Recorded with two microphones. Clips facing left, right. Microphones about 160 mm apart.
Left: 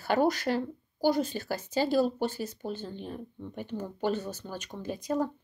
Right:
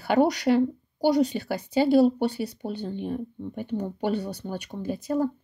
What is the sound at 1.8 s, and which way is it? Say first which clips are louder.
Speech: right 7 dB; 60° right (ahead or behind).